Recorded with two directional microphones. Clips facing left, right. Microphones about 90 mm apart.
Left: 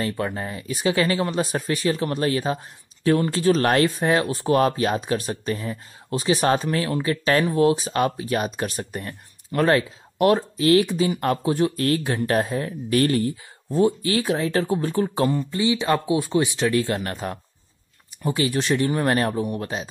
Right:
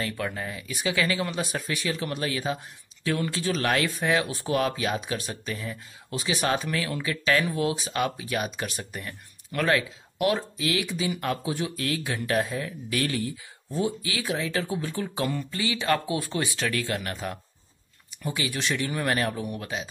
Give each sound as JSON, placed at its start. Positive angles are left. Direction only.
{"t": 0.0, "sound": "speech", "side_deg": 30}